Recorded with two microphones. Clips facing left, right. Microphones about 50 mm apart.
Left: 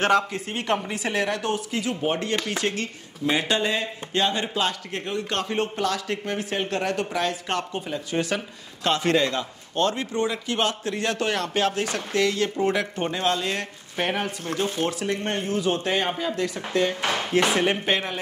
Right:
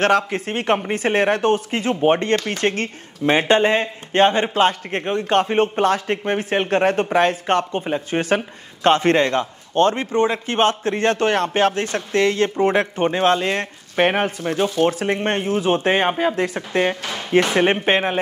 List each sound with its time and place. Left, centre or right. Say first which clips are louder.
0.0 s a man's voice: right 4 dB; right